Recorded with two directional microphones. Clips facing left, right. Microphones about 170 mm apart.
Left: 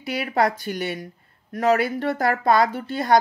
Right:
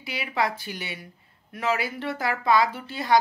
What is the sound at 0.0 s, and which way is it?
A woman's voice, 45° left (ahead or behind).